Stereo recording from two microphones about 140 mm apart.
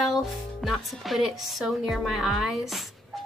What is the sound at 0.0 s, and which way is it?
Speech, centre (ahead or behind).